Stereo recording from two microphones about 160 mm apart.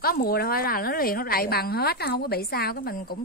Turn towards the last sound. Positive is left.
turn(degrees=70)  # may be behind; listen again after turning